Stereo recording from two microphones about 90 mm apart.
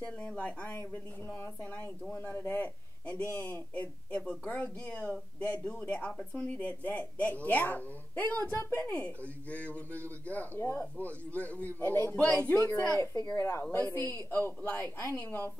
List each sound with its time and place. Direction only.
0.0 s a man's voice: 15° left (ahead or behind)
12.2 s a man's voice: 15° left (ahead or behind)
13.1 s speech: 45° left (ahead or behind)
13.4 s speech: 30° left (ahead or behind)